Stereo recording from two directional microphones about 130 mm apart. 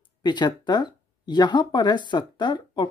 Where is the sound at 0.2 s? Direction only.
35° left (ahead or behind).